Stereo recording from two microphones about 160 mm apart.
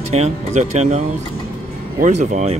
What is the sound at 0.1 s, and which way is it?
Speech, 45° right (ahead or behind).